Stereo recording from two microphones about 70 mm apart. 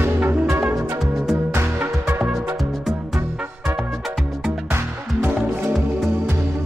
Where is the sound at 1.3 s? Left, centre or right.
Right.